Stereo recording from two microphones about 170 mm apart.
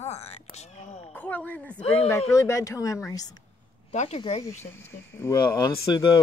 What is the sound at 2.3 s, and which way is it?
Speech, 20° left (ahead or behind).